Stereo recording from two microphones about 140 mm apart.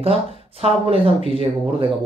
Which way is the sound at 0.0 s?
45° right (ahead or behind).